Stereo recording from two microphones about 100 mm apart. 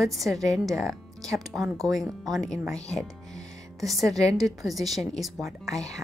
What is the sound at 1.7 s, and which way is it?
Speech, 35° right (ahead or behind).